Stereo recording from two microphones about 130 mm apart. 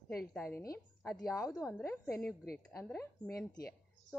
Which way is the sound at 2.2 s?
Centre (ahead or behind).